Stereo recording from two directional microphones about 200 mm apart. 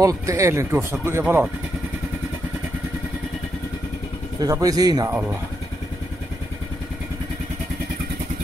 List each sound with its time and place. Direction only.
0.0 s speech: 15° right (ahead or behind)
4.4 s speech: 20° right (ahead or behind)